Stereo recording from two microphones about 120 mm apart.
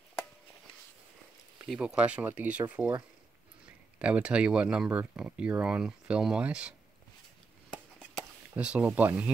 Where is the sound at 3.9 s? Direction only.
10° right (ahead or behind).